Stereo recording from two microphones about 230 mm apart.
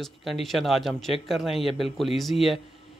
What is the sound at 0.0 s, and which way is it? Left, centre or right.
Speech, centre.